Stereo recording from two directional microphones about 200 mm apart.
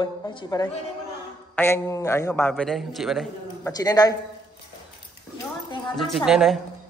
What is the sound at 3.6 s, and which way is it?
Speech, 20° left (ahead or behind).